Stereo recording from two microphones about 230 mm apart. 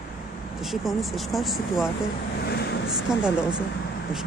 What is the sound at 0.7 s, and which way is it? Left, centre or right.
Speech, centre.